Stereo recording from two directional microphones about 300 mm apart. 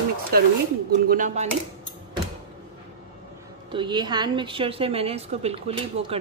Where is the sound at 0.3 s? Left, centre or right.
Right.